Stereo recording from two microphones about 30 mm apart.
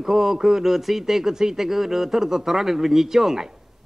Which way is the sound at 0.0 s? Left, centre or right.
Centre.